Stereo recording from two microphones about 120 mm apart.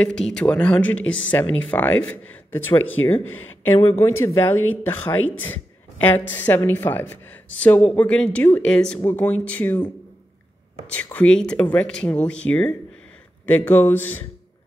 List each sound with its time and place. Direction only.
0.0 s a woman's voice: 5° left (ahead or behind)
10.9 s speech: 10° left (ahead or behind)